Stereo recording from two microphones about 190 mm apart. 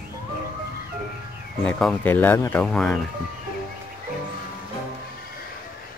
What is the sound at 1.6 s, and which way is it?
Speech, 5° left (ahead or behind).